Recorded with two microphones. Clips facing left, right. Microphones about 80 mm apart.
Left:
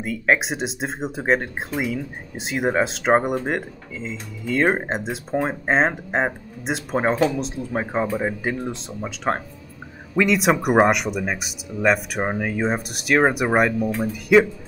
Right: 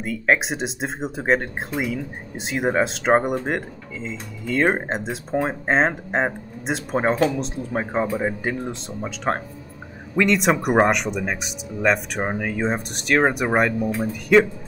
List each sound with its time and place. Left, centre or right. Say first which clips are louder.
0.0 s speech: even; centre